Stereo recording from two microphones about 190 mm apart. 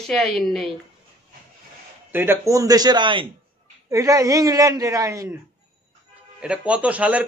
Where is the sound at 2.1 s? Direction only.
15° right (ahead or behind).